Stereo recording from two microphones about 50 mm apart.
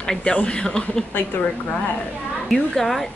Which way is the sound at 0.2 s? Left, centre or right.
Left.